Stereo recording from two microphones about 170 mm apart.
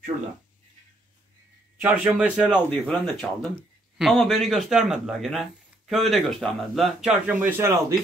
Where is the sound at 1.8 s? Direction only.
10° right (ahead or behind).